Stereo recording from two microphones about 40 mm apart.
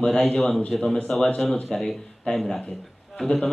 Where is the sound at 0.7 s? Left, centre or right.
Centre.